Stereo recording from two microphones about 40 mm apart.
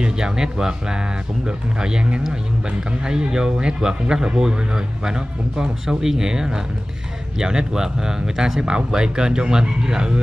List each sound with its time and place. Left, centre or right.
0.0 s speech: centre